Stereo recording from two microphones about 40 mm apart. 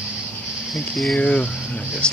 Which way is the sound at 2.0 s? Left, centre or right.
Left.